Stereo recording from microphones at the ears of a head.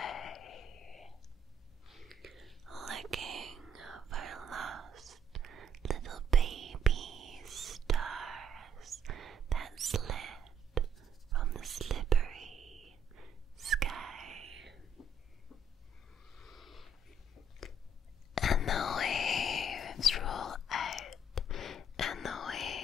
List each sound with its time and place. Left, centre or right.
0.0 s a sound: left
2.8 s whispering: right
18.3 s whispering: left